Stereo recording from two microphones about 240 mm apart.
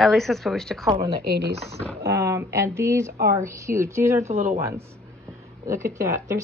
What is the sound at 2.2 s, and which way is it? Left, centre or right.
Speech, centre.